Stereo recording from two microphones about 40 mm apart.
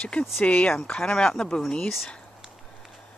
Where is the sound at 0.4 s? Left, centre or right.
Left.